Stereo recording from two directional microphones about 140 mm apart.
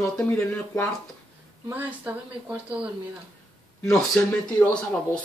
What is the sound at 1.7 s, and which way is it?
Speech, 10° right (ahead or behind).